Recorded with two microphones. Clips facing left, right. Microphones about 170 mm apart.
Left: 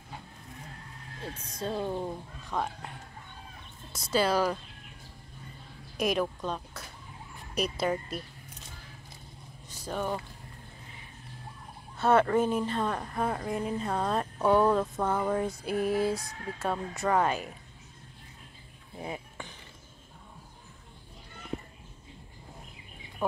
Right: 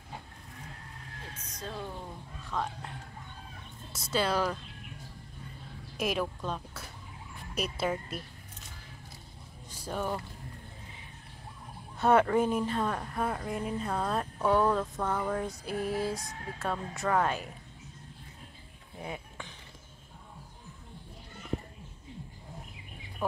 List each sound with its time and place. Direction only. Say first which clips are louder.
1.6 s speech: left 8 dB; 30° left (ahead or behind)
2.5 s speech: left 2 dB; 10° left (ahead or behind)
3.9 s a woman's voice: left 3 dB; centre (ahead or behind)
5.9 s a woman's voice: left 3 dB; 5° right (ahead or behind)
9.7 s a sound: left 1 dB; 10° right (ahead or behind)
12.0 s a woman's voice: left 1 dB; 10° right (ahead or behind)
18.9 s a sound: left 2 dB; 5° left (ahead or behind)